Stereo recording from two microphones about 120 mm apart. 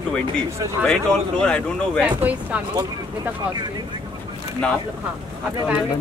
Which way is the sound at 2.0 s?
15° right (ahead or behind).